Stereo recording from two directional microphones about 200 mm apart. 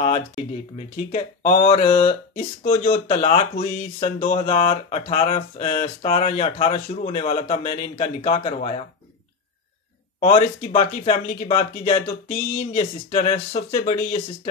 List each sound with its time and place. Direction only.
0.7 s speech: 35° left (ahead or behind)
10.2 s speech: 30° left (ahead or behind)